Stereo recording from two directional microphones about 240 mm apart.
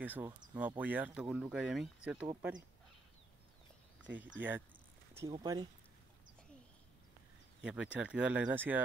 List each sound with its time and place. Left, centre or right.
0.0 s speech: centre
4.0 s speech: centre
7.6 s speech: centre